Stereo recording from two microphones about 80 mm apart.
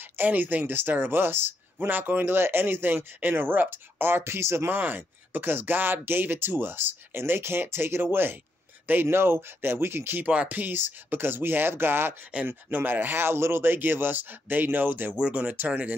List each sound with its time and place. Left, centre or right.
0.2 s speech: right
10.2 s speech: centre